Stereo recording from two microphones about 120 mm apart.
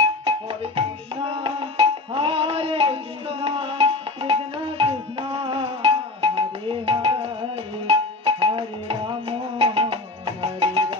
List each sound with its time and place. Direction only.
0.2 s music: 50° right (ahead or behind)